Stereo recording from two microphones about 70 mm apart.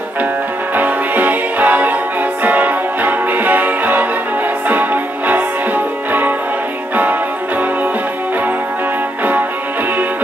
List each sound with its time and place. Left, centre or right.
0.7 s music: right